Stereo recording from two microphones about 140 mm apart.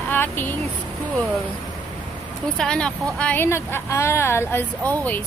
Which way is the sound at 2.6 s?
5° left (ahead or behind).